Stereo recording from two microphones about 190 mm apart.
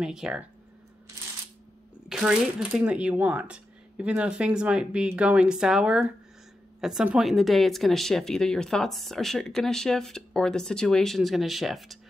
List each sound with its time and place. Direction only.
0.0 s speech: 5° right (ahead or behind)
2.0 s speech: 5° right (ahead or behind)